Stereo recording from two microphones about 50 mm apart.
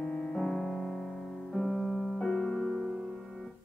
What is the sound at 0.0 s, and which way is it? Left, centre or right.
Music, centre.